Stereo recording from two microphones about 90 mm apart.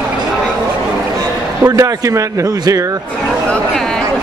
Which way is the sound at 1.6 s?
35° right (ahead or behind).